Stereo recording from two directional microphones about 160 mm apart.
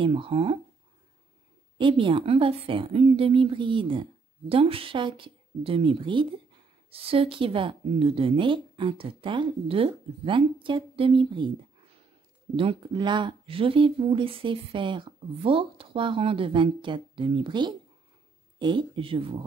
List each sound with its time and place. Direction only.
0.0 s speech: 35° right (ahead or behind)
1.8 s speech: 30° right (ahead or behind)
12.5 s speech: 30° right (ahead or behind)